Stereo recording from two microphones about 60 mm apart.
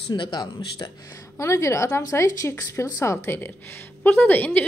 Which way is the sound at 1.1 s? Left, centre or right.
Left.